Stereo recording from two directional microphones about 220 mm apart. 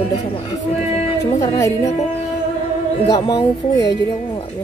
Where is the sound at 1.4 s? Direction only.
15° left (ahead or behind).